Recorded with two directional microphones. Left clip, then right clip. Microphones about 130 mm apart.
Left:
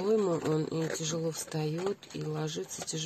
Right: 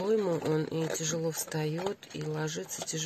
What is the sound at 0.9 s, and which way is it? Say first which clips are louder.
Speech: right 1 dB; 20° left (ahead or behind).